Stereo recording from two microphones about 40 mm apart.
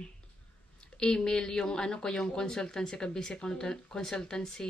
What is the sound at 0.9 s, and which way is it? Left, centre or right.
Speech, centre.